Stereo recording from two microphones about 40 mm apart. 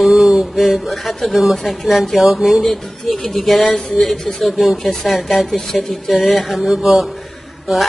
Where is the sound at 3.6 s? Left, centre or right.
Left.